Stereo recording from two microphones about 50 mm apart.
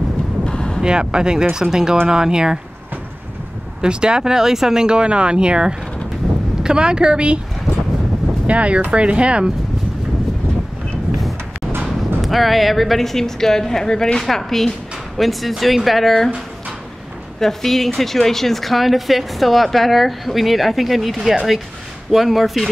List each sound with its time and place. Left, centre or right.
0.5 s vehicle: centre
0.8 s speech: centre
3.8 s speech: centre
8.5 s speech: right
12.2 s speech: centre
17.4 s speech: centre